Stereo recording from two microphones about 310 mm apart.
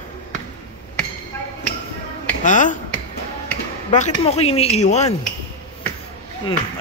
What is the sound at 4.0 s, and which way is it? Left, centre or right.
A man's voice, centre.